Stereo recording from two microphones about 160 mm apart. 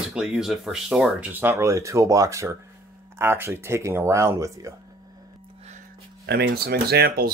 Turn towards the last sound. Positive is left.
turn(degrees=-75)  # may be behind; listen again after turning